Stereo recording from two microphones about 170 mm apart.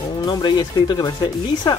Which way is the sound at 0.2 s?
25° left (ahead or behind).